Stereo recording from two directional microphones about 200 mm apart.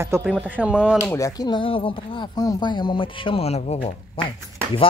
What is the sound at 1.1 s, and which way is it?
Speech, 15° left (ahead or behind).